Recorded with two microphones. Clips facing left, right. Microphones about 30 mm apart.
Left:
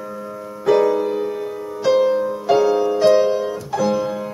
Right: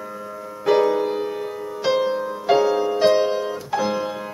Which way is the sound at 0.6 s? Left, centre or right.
Centre.